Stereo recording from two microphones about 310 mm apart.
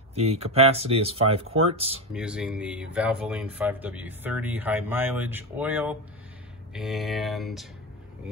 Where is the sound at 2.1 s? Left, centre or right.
Centre.